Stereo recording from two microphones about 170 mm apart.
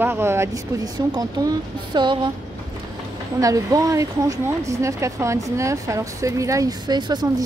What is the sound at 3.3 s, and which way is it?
Speech, 20° right (ahead or behind).